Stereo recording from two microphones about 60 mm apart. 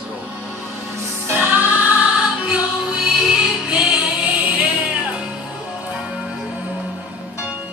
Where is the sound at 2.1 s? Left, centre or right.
Centre.